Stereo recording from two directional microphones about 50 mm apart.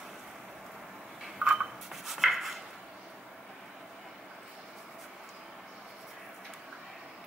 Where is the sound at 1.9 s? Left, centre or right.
Centre.